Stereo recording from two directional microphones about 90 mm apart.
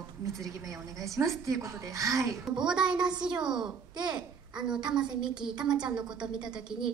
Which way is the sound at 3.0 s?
55° right (ahead or behind).